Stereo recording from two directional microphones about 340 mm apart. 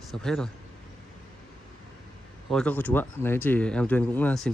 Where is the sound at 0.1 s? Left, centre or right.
Centre.